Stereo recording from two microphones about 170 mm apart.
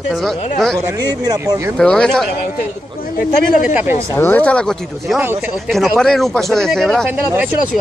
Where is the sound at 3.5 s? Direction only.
50° left (ahead or behind).